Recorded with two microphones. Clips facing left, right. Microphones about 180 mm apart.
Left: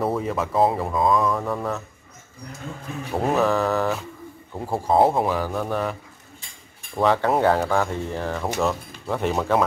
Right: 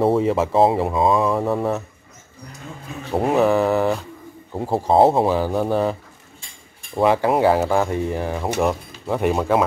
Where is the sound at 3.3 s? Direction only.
15° right (ahead or behind).